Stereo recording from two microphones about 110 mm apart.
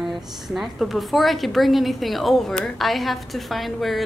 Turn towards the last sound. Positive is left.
turn(degrees=0)  # may be behind; listen again after turning